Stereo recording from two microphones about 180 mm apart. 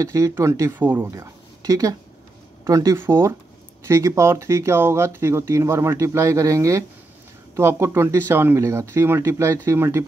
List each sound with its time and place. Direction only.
0.0 s speech: 15° right (ahead or behind)